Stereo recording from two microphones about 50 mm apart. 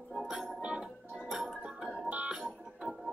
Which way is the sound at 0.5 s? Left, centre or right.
Right.